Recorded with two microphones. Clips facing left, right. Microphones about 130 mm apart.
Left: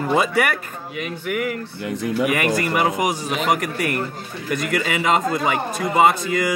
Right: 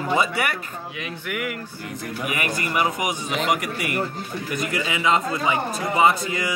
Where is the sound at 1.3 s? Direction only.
40° left (ahead or behind).